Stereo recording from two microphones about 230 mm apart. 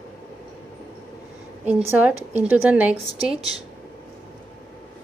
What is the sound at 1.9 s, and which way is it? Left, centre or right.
A woman's voice, centre.